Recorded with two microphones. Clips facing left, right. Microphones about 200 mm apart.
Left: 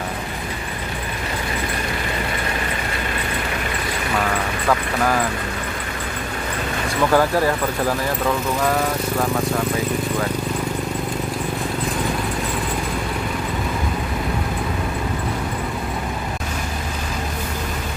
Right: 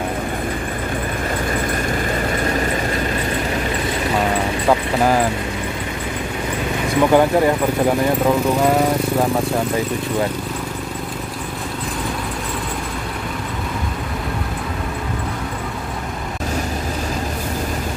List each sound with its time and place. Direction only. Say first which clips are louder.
4.1 s vehicle: right 2 dB; 25° right (ahead or behind)
7.0 s speech: right 4 dB; 20° right (ahead or behind)